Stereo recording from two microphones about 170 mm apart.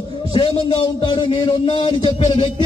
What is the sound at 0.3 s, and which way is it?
A man's voice, 30° left (ahead or behind).